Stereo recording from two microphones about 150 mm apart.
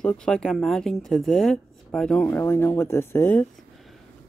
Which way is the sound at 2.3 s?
15° left (ahead or behind).